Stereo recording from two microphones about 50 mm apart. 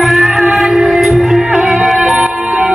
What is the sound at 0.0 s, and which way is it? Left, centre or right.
Music, centre.